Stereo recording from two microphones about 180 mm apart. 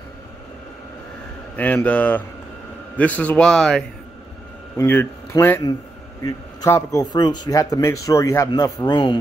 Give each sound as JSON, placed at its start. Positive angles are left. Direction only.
{"t": 1.6, "sound": "speech", "side_deg": 10}
{"t": 4.7, "sound": "a man's voice", "side_deg": 15}